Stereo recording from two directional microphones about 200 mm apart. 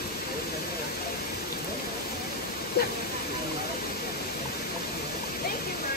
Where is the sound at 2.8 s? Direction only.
50° left (ahead or behind).